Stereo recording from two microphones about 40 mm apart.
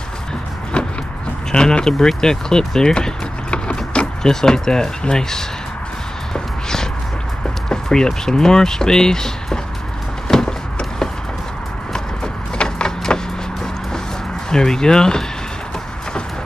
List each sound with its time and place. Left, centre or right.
0.7 s a sound: left
1.5 s speech: centre
4.2 s speech: centre
6.3 s walk: centre
7.7 s speech: centre
10.2 s a sound: centre
12.5 s vehicle: centre
14.5 s speech: centre